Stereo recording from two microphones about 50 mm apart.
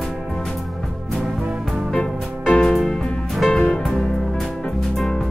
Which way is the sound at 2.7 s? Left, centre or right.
Centre.